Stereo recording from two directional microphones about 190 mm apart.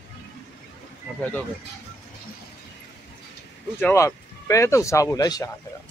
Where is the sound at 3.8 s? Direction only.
15° left (ahead or behind).